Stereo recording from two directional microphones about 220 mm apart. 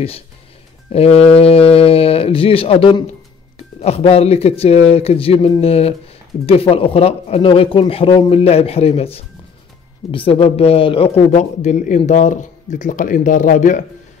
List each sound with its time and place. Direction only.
0.9 s speech: 25° left (ahead or behind)